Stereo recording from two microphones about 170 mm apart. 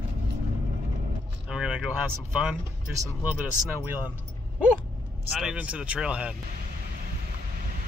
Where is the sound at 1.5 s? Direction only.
5° right (ahead or behind).